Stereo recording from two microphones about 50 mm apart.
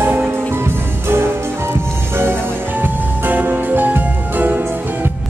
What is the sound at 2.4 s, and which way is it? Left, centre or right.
Music, right.